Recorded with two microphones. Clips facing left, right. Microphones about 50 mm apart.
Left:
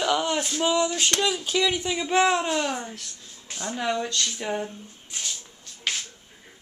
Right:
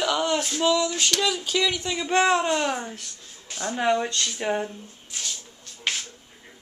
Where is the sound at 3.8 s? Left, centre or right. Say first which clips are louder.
Right 4 dB; right.